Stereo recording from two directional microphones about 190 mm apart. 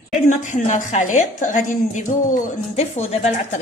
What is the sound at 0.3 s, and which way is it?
A woman's voice, 40° left (ahead or behind).